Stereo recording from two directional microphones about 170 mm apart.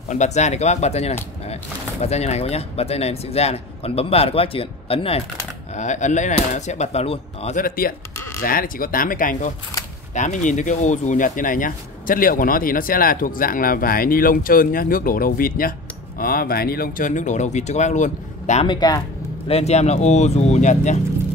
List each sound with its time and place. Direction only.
0.1 s speech: 45° left (ahead or behind)
5.8 s speech: 45° left (ahead or behind)
7.6 s speech: 60° left (ahead or behind)
18.7 s speech: 25° left (ahead or behind)
19.4 s speech: 40° left (ahead or behind)